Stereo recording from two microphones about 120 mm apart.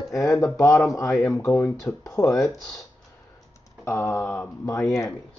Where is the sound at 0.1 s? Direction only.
25° left (ahead or behind).